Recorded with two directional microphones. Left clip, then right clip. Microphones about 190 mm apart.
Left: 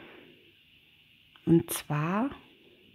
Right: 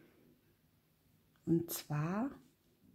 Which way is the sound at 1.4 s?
30° left (ahead or behind).